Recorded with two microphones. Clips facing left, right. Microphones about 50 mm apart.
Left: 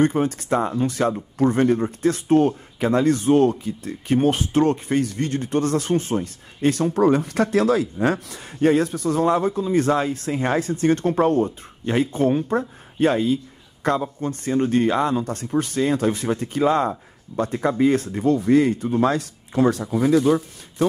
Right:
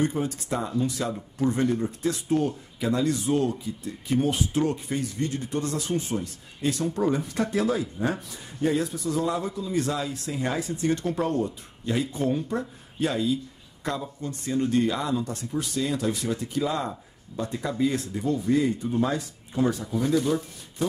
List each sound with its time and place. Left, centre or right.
0.0 s speech: left